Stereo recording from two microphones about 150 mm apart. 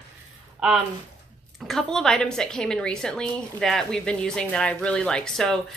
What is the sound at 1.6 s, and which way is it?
A woman's voice, centre (ahead or behind).